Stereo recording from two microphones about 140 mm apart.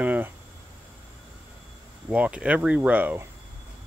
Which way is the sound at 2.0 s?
10° right (ahead or behind).